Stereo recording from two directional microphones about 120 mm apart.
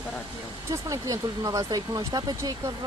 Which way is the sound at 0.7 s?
30° right (ahead or behind).